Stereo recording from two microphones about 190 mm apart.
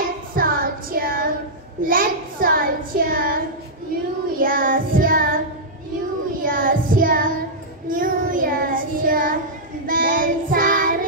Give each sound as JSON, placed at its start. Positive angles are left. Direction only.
{"t": 0.3, "sound": "child singing", "side_deg": -50}
{"t": 1.8, "sound": "a child's voice", "side_deg": -45}
{"t": 6.4, "sound": "child singing", "side_deg": -45}